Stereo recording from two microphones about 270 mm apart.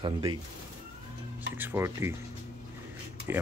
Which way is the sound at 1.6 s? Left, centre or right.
Centre.